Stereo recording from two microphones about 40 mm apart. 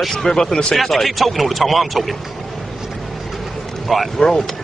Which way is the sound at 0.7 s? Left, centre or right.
Centre.